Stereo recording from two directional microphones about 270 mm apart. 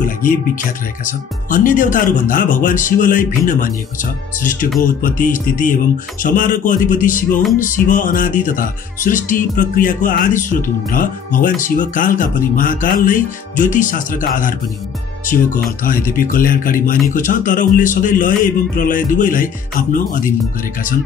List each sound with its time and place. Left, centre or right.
0.0 s speech: left
1.5 s music: left
15.2 s speech: left
17.1 s music: left